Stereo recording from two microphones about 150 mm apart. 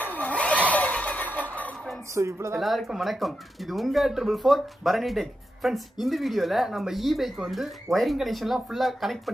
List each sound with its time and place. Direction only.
0.0 s a sound: 10° left (ahead or behind)
2.1 s a woman's voice: 20° right (ahead or behind)
2.6 s speech: centre (ahead or behind)